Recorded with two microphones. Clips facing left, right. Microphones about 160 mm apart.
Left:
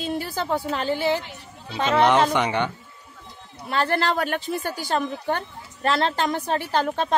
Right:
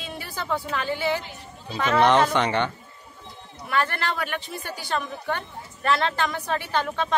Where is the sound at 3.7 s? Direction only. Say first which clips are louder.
Left 3 dB; 30° left (ahead or behind).